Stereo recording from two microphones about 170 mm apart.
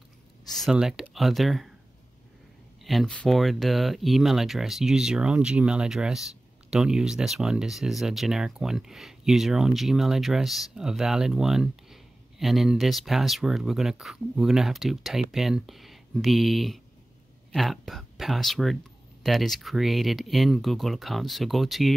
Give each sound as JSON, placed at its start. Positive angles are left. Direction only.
{"t": 0.5, "sound": "speech", "side_deg": 0}
{"t": 2.8, "sound": "speech", "side_deg": 0}